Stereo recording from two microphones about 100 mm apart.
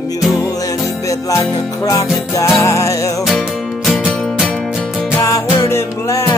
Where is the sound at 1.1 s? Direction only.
35° left (ahead or behind).